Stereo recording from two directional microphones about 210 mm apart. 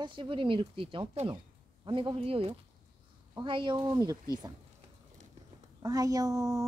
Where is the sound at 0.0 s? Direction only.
25° right (ahead or behind).